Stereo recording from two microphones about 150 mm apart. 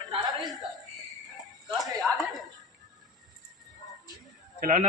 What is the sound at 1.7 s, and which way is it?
Chuckle, centre (ahead or behind).